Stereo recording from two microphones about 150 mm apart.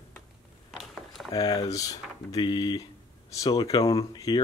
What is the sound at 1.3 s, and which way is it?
Speech, 25° left (ahead or behind).